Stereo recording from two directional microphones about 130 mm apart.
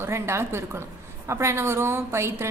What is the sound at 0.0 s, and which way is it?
A woman's voice, 20° right (ahead or behind).